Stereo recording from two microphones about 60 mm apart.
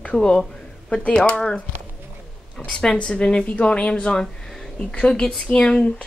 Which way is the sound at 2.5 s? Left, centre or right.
Centre.